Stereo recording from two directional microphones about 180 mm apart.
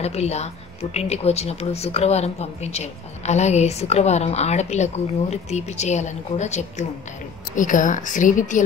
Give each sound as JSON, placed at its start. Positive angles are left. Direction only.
{"t": 0.0, "sound": "a woman's voice", "side_deg": 35}